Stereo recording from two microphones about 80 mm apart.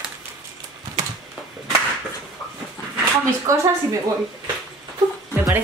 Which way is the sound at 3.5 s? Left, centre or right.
Right.